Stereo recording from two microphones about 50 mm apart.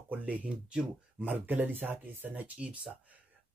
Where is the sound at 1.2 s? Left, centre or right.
Right.